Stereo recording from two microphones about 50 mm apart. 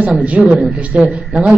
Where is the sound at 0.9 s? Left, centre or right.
Centre.